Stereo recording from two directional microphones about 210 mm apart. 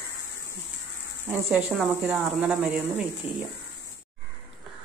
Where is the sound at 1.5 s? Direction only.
5° right (ahead or behind).